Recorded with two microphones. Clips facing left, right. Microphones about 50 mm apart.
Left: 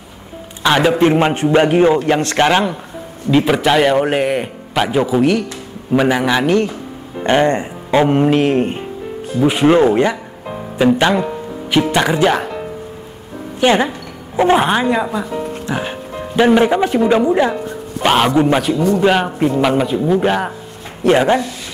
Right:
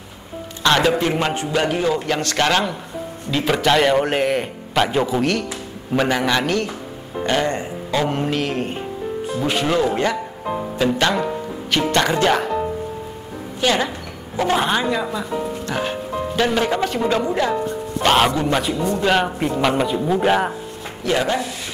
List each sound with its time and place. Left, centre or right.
0.6 s a man's voice: centre
0.9 s a man's voice: left
9.8 s speech: left
10.8 s a man's voice: centre
13.6 s speech: left
18.0 s a man's voice: centre
18.3 s speech: left
18.6 s a man's voice: centre
21.0 s speech: left